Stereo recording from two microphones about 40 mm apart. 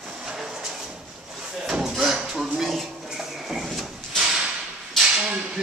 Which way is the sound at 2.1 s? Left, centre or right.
Centre.